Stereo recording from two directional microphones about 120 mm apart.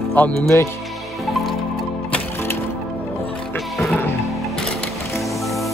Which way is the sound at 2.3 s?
20° left (ahead or behind).